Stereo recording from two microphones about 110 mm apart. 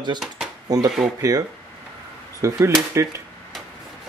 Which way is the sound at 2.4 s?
30° right (ahead or behind).